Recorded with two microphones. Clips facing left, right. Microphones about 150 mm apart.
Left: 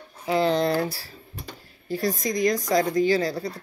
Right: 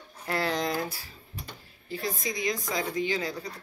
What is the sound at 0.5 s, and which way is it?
Speech, 30° left (ahead or behind).